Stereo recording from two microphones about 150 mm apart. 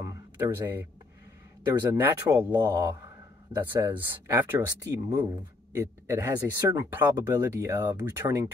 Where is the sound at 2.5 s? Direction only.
30° right (ahead or behind).